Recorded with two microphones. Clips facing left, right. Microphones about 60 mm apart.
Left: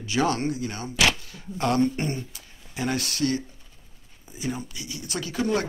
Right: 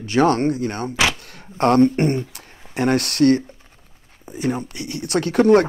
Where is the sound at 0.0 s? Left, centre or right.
Right.